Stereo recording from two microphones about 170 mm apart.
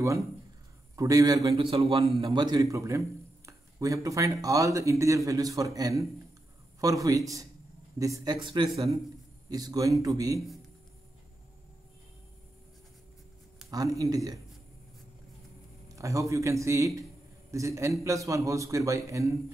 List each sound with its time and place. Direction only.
0.9 s speech: 20° right (ahead or behind)
1.6 s a man's voice: 30° right (ahead or behind)
13.7 s speech: 20° right (ahead or behind)
16.0 s a man's voice: 15° right (ahead or behind)